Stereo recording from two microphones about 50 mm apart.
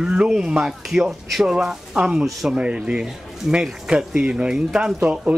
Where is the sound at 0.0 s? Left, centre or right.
Centre.